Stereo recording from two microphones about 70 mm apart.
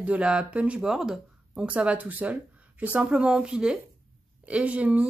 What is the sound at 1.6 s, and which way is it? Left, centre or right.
A woman's voice, centre.